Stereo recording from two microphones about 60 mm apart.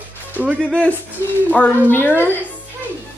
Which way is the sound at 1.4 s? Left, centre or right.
Left.